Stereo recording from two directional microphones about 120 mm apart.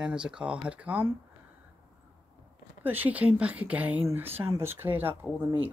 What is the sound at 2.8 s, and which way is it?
Speech, 15° right (ahead or behind).